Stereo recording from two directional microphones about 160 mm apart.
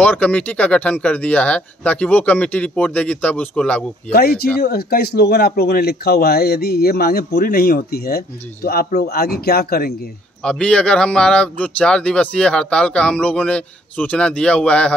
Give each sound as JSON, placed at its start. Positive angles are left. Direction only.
{"t": 0.0, "sound": "a man's voice", "side_deg": 10}
{"t": 4.1, "sound": "speech", "side_deg": 70}
{"t": 10.4, "sound": "a man's voice", "side_deg": 5}